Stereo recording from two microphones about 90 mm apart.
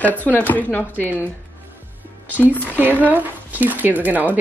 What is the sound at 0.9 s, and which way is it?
Speech, 20° right (ahead or behind).